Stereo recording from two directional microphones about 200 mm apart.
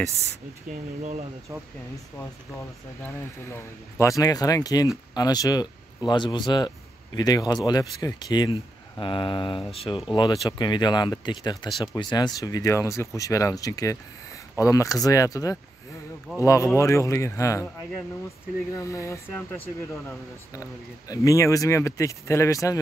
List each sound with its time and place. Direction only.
3.0 s speech: 15° left (ahead or behind)
18.8 s speech: 15° left (ahead or behind)